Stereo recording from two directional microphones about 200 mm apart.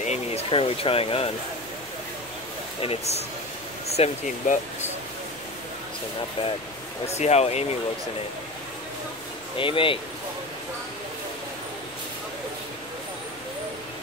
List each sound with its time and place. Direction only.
0.0 s speech: 30° left (ahead or behind)
2.8 s speech: 30° left (ahead or behind)
7.1 s speech: 35° left (ahead or behind)
9.6 s speech: 25° left (ahead or behind)